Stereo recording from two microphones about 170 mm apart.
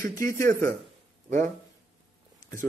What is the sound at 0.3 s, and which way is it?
Speech, 15° left (ahead or behind).